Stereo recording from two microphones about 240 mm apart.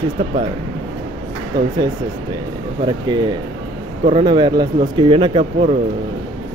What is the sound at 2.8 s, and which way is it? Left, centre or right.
A man's voice, centre.